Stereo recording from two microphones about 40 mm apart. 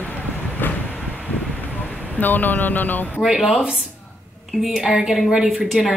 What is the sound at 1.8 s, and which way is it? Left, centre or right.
Speech, left.